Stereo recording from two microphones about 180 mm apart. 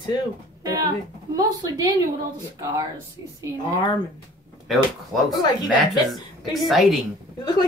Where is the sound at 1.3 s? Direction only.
20° right (ahead or behind).